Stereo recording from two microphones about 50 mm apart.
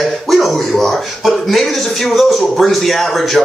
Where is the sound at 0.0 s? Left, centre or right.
Centre.